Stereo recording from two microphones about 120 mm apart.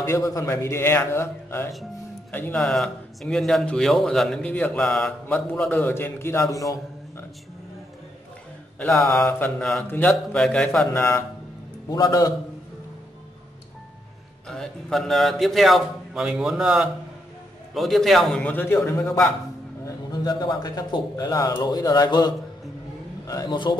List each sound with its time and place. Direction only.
0.0 s a man's voice: 25° left (ahead or behind)
2.6 s a man's voice: centre (ahead or behind); by 7.2 s 25° left (ahead or behind)
8.9 s a man's voice: 25° left (ahead or behind)
9.3 s a man's voice: 15° left (ahead or behind)
10.9 s a man's voice: 20° left (ahead or behind)
14.5 s a man's voice: 5° left (ahead or behind)
18.4 s a man's voice: 15° left (ahead or behind)
19.8 s speech: 35° left (ahead or behind)